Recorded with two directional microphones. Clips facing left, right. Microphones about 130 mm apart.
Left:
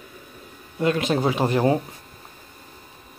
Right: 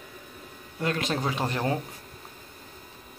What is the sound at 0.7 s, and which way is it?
Speech, 10° left (ahead or behind).